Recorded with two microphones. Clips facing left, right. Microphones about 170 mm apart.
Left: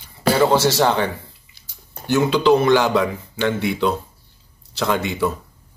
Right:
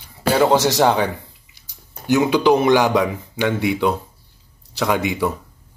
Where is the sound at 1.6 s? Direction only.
15° right (ahead or behind).